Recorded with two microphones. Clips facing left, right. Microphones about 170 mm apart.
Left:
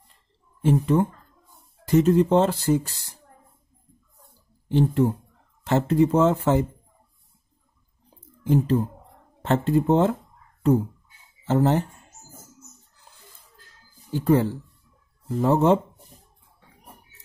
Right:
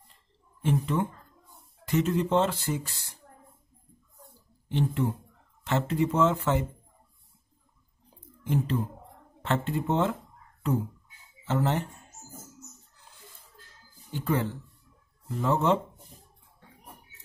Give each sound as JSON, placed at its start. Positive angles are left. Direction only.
{"t": 0.7, "sound": "speech", "side_deg": 40}
{"t": 4.6, "sound": "speech", "side_deg": 40}
{"t": 8.5, "sound": "speech", "side_deg": 35}
{"t": 11.4, "sound": "speech", "side_deg": 35}
{"t": 14.1, "sound": "speech", "side_deg": 35}